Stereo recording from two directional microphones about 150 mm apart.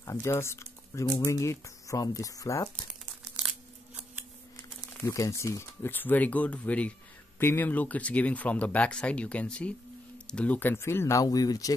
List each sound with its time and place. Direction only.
0.0 s speech: 20° left (ahead or behind)
3.9 s scissors: 10° right (ahead or behind)
4.9 s speech: 20° left (ahead or behind)